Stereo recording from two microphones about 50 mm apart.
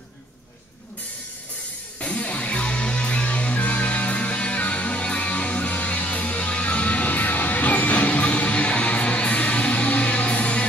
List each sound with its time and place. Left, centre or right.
2.0 s music: left